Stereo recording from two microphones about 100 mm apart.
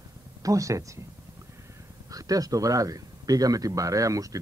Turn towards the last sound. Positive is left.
turn(degrees=-35)  # may be behind; listen again after turning